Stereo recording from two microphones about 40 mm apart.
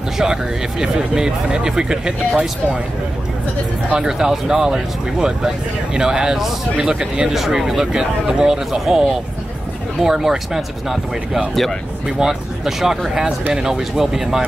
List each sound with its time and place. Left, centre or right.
0.2 s speech: centre
3.9 s speech: centre